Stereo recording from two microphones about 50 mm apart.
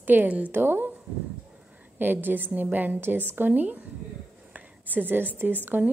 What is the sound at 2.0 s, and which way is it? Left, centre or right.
A woman's voice, right.